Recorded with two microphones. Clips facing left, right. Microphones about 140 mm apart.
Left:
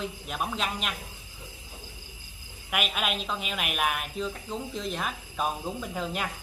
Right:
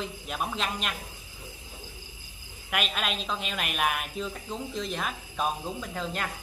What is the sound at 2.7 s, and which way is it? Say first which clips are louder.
A man's voice: left 1 dB; 5° left (ahead or behind).